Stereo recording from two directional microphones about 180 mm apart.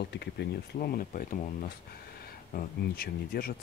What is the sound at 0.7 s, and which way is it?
Speech, 50° left (ahead or behind).